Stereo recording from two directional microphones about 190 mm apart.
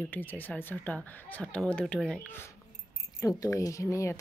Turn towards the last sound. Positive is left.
turn(degrees=15)  # may be behind; listen again after turning